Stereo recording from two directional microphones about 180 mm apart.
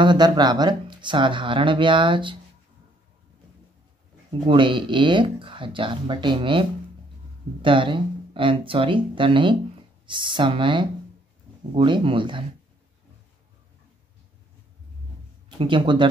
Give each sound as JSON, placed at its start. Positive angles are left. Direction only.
{"t": 0.0, "sound": "speech", "side_deg": -25}
{"t": 4.5, "sound": "speech", "side_deg": -25}
{"t": 7.6, "sound": "speech", "side_deg": -30}
{"t": 15.6, "sound": "speech", "side_deg": -25}